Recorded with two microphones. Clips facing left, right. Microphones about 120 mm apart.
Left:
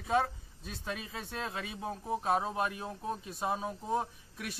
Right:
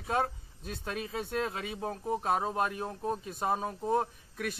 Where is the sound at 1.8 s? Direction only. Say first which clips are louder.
Right 2 dB; 40° right (ahead or behind).